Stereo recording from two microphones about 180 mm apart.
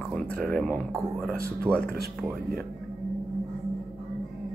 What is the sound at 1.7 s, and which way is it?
Speech, 10° right (ahead or behind).